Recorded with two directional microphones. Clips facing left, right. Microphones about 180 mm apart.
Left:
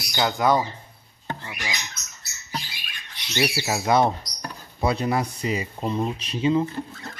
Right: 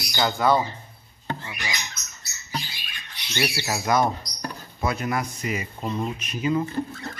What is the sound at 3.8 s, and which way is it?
Speech, 25° left (ahead or behind).